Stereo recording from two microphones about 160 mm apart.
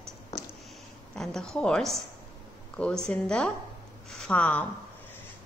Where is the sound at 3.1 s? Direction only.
5° left (ahead or behind).